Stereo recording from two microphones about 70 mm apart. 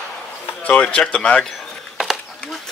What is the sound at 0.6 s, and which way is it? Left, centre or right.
Speech, left.